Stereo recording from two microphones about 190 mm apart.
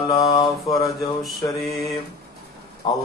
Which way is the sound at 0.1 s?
20° left (ahead or behind).